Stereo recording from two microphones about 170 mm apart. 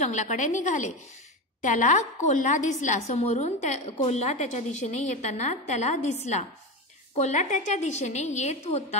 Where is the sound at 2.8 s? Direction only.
40° left (ahead or behind).